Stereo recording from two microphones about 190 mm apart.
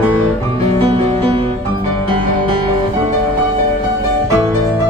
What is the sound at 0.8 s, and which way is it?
Music, 30° right (ahead or behind).